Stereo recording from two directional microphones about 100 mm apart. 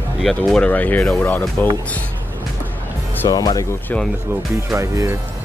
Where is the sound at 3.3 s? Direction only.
40° left (ahead or behind).